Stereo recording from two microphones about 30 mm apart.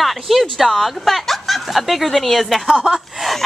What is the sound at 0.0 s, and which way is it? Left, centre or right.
Speech, centre.